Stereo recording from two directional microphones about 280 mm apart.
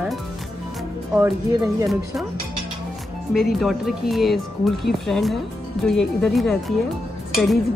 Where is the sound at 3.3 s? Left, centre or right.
Centre.